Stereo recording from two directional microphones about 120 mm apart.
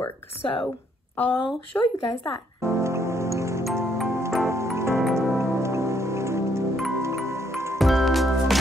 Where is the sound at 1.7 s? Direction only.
15° left (ahead or behind).